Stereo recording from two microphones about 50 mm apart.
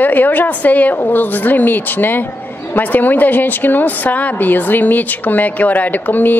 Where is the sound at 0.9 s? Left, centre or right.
Left.